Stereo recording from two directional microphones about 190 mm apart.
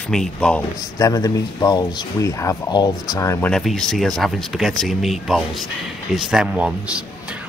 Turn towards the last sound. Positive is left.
turn(degrees=-5)  # may be behind; listen again after turning